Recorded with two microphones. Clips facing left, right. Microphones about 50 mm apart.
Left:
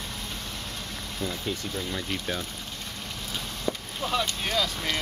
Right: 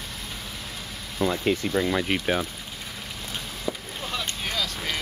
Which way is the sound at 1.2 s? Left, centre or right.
Right.